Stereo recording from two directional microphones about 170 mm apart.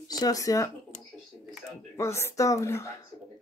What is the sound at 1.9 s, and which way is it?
Speech, 15° left (ahead or behind).